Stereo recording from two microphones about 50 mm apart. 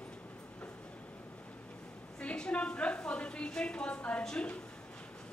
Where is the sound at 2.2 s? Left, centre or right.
Left.